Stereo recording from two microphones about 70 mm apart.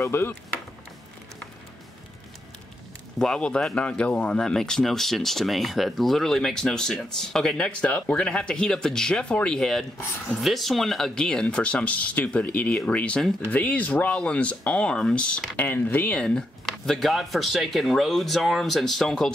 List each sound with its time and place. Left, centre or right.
0.0 s speech: left
3.2 s speech: centre
15.5 s speech: left
16.2 s speech: centre